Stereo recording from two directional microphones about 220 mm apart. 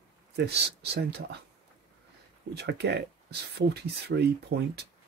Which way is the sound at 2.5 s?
50° right (ahead or behind).